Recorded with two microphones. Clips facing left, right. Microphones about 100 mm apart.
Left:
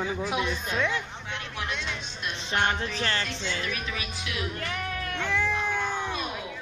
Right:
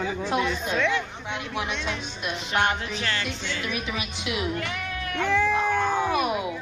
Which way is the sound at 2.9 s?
35° left (ahead or behind).